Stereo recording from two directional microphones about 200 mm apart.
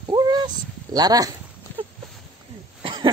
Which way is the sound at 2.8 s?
25° right (ahead or behind).